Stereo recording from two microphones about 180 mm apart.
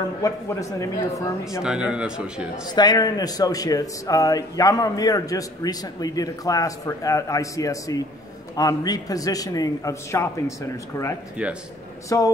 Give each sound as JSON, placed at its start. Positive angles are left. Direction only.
{"t": 0.2, "sound": "speech", "side_deg": 15}
{"t": 1.6, "sound": "speech", "side_deg": -5}
{"t": 2.7, "sound": "a man's voice", "side_deg": 25}
{"t": 12.1, "sound": "a man's voice", "side_deg": 20}